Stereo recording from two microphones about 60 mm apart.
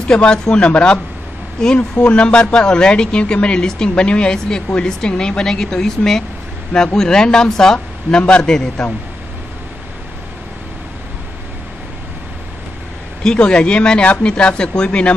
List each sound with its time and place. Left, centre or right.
0.1 s speech: centre
8.8 s speech: centre
13.2 s speech: centre